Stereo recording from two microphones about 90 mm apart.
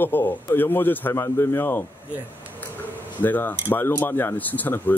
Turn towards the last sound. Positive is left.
turn(degrees=20)  # may be behind; listen again after turning